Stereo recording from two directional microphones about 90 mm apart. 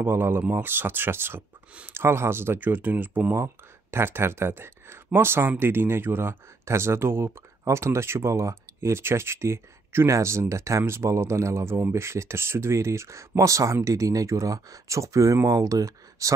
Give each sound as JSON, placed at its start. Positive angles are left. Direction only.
{"t": 0.0, "sound": "speech", "side_deg": -25}